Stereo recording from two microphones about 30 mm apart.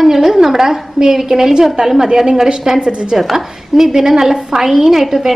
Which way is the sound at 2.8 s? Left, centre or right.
Right.